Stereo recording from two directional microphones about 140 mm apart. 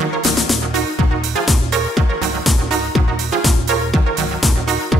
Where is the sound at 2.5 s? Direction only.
Centre (ahead or behind).